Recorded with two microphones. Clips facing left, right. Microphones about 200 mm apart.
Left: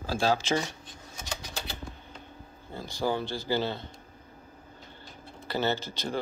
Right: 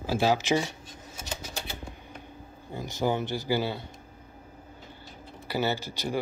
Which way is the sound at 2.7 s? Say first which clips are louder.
Right 2 dB; 20° right (ahead or behind).